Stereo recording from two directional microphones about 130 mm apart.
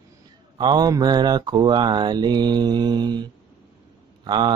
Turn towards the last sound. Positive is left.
turn(degrees=-35)  # may be behind; listen again after turning